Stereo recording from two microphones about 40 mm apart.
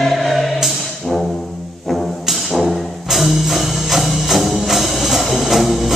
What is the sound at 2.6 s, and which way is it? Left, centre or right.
Music, centre.